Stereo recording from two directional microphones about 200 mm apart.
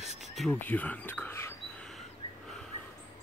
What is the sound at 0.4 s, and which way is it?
Speech, 5° left (ahead or behind).